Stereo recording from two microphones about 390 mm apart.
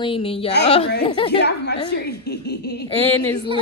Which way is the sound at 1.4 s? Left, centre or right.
Left.